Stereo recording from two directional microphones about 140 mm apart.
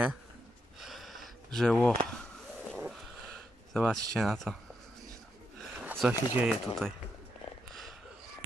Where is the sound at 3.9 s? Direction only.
Centre (ahead or behind).